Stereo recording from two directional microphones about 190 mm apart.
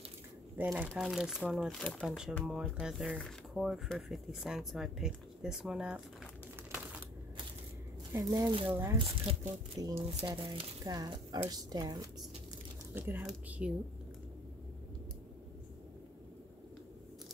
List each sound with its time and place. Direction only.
0.6 s speech: 10° right (ahead or behind)
8.1 s speech: 20° right (ahead or behind)
8.6 s speech: 10° right (ahead or behind)
8.9 s speech: 25° right (ahead or behind)
12.9 s speech: 10° right (ahead or behind)